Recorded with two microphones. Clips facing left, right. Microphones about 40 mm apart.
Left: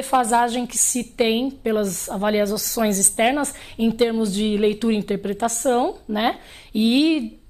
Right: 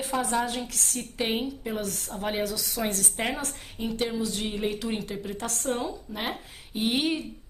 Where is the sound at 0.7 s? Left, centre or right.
Centre.